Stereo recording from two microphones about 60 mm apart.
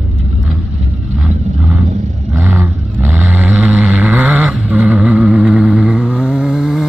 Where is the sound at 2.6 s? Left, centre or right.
Right.